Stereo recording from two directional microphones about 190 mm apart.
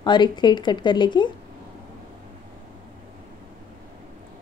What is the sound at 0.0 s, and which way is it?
A woman's voice, 25° left (ahead or behind).